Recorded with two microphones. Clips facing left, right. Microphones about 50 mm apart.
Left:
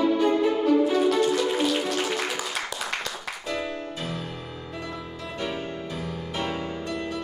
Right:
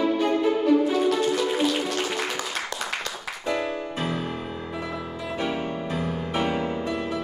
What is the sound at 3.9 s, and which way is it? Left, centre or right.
Music, right.